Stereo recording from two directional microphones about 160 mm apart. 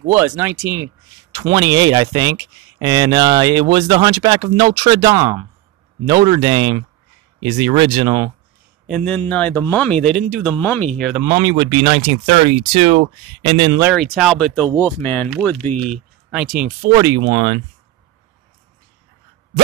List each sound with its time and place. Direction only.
0.1 s speech: 15° right (ahead or behind); by 8.3 s 30° right (ahead or behind)
8.8 s a man's voice: 5° left (ahead or behind)
10.6 s a man's voice: 10° left (ahead or behind)
11.2 s speech: 25° right (ahead or behind)
12.4 s speech: 40° right (ahead or behind)
13.9 s a man's voice: centre (ahead or behind)
16.9 s speech: 25° right (ahead or behind)